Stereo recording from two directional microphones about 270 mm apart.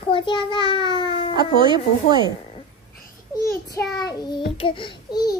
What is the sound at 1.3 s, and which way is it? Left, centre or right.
Speech, centre.